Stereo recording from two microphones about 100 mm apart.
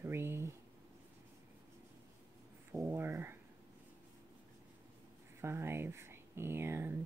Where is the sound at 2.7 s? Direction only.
25° right (ahead or behind).